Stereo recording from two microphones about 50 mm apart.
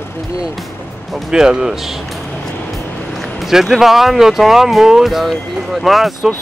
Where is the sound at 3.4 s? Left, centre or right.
Centre.